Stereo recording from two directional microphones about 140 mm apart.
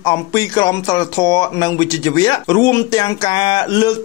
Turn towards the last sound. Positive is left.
turn(degrees=30)  # may be behind; listen again after turning